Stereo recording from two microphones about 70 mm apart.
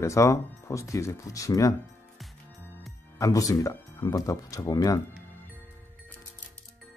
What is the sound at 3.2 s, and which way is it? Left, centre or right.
Speech, left.